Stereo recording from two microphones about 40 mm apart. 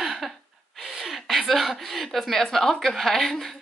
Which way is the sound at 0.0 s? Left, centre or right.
Centre.